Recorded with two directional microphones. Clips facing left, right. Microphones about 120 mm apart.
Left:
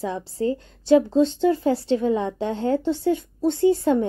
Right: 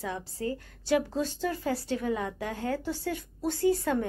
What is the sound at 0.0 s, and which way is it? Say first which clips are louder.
A woman's voice: left 9 dB; 30° left (ahead or behind).